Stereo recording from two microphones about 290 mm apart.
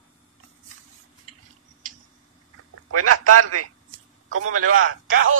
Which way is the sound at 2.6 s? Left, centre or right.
Right.